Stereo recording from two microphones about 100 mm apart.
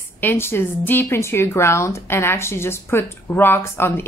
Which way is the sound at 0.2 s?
20° left (ahead or behind).